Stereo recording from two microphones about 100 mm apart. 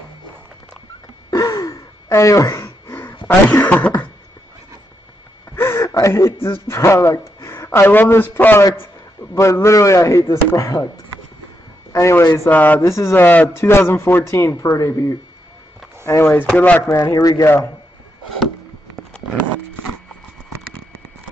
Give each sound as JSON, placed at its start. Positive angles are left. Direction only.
{"t": 1.3, "sound": "gasp", "side_deg": 35}
{"t": 5.6, "sound": "a sound", "side_deg": 25}
{"t": 6.7, "sound": "a man's voice", "side_deg": 30}
{"t": 11.9, "sound": "a man's voice", "side_deg": 30}
{"t": 12.4, "sound": "speech", "side_deg": 15}
{"t": 12.8, "sound": "a man's voice", "side_deg": 25}
{"t": 16.3, "sound": "speech", "side_deg": 15}
{"t": 16.9, "sound": "a man's voice", "side_deg": 30}